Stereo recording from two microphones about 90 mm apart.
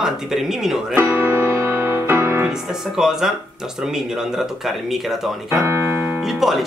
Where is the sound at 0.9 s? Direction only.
25° right (ahead or behind).